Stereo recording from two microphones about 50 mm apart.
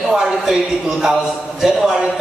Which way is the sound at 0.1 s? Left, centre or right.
Centre.